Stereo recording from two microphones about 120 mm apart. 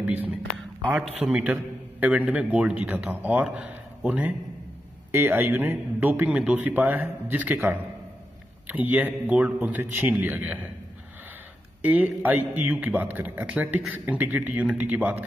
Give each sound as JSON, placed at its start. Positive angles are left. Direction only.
{"t": 0.0, "sound": "speech", "side_deg": -15}
{"t": 1.0, "sound": "a man's voice", "side_deg": 0}
{"t": 11.8, "sound": "a man's voice", "side_deg": -15}